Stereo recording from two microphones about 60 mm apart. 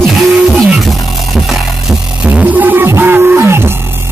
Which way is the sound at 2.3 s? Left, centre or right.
Right.